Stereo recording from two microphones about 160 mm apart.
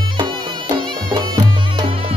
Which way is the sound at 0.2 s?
25° right (ahead or behind).